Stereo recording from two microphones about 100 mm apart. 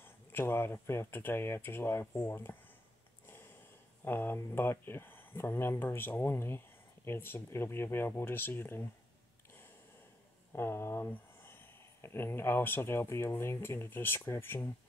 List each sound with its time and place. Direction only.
0.0 s speech: 20° left (ahead or behind)
3.3 s a sound: 20° left (ahead or behind)
4.0 s speech: 20° left (ahead or behind)
10.5 s speech: 25° left (ahead or behind)